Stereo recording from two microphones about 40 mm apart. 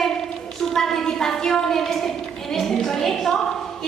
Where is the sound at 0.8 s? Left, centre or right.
Centre.